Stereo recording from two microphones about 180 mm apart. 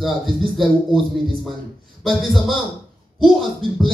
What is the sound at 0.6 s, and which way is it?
A man's voice, centre (ahead or behind).